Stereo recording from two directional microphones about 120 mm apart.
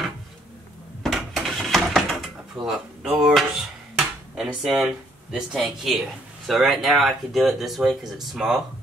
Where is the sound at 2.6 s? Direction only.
Centre (ahead or behind).